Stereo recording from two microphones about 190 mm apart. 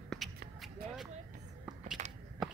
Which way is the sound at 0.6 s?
Centre (ahead or behind).